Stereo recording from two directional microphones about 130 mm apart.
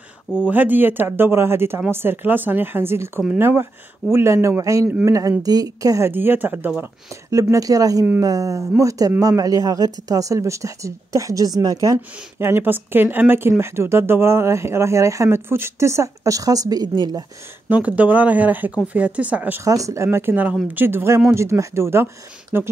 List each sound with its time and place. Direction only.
0.5 s a woman's voice: 15° right (ahead or behind)
6.8 s a woman's voice: 25° right (ahead or behind)
17.6 s speech: 10° right (ahead or behind)
19.6 s a woman's voice: 25° right (ahead or behind)